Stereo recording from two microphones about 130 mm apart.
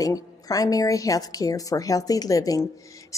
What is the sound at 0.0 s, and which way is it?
Speech, 30° left (ahead or behind).